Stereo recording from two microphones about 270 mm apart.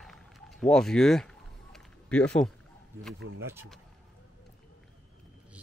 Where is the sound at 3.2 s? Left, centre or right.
Right.